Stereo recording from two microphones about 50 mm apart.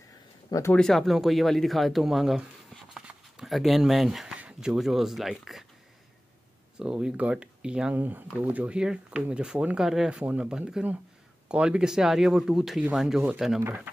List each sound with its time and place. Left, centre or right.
0.7 s speech: centre
1.0 s speech: centre
3.4 s speech: centre
4.5 s speech: centre
6.8 s speech: centre
7.9 s speech: right
8.7 s speech: centre
10.2 s speech: right; by 13.5 s centre